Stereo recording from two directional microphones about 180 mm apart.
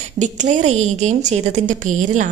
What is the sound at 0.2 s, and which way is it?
A woman's voice, 40° right (ahead or behind).